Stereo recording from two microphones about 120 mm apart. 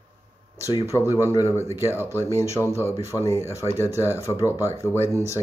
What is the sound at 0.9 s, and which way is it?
Speech, 20° left (ahead or behind).